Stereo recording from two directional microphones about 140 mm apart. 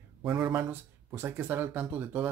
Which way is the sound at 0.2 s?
5° right (ahead or behind).